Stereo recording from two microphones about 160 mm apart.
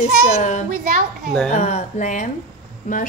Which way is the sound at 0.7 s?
50° right (ahead or behind).